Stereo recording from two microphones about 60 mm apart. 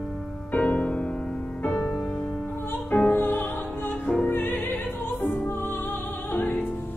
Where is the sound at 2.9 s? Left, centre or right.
Left.